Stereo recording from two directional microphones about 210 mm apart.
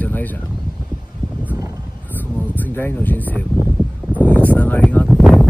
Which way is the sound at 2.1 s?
10° left (ahead or behind).